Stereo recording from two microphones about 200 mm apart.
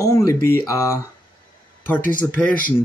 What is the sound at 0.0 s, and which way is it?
Speech, 15° left (ahead or behind).